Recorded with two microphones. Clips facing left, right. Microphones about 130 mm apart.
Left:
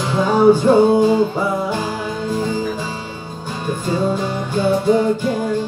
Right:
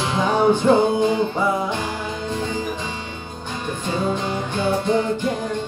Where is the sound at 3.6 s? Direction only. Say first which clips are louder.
Left 4 dB; 10° left (ahead or behind).